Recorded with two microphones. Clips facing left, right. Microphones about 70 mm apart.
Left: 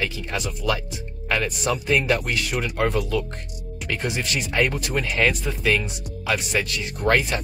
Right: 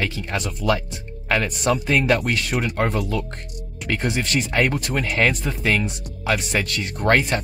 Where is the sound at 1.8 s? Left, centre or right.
Right.